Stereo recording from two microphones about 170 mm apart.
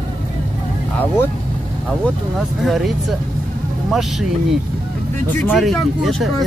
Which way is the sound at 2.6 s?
Centre (ahead or behind).